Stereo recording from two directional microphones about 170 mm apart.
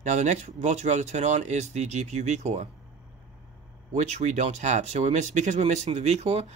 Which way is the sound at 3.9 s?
45° right (ahead or behind).